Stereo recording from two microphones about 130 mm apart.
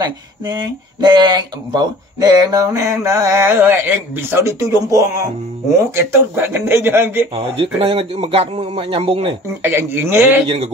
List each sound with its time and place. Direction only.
0.0 s speech: 35° right (ahead or behind); by 7.2 s 20° right (ahead or behind)
7.3 s a man's voice: 45° right (ahead or behind)
9.6 s speech: 15° right (ahead or behind)